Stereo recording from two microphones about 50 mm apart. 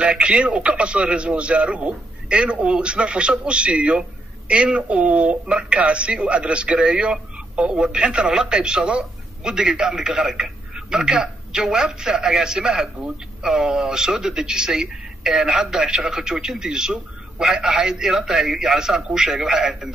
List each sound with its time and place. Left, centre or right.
0.0 s speech: right